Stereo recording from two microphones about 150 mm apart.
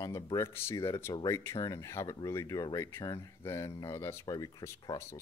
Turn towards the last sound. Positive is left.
turn(degrees=20)  # may be behind; listen again after turning